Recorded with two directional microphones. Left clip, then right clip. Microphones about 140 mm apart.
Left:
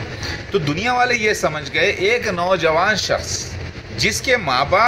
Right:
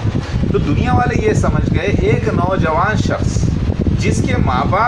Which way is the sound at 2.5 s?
10° left (ahead or behind).